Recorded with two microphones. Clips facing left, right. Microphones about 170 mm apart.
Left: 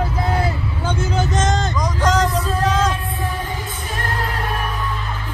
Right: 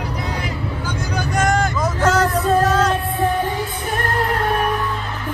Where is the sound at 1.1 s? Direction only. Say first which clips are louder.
Right 2 dB; 20° left (ahead or behind).